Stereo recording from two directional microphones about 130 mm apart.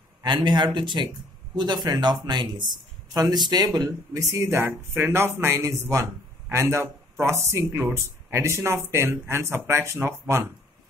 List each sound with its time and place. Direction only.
0.2 s speech: 35° right (ahead or behind); by 10.5 s 20° right (ahead or behind)